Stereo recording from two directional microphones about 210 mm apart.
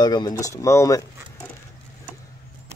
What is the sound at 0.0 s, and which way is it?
Speech, 20° left (ahead or behind).